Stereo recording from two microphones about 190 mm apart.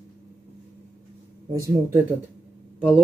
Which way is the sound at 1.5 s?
15° right (ahead or behind).